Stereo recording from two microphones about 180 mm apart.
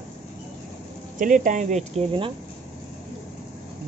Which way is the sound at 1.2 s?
45° right (ahead or behind).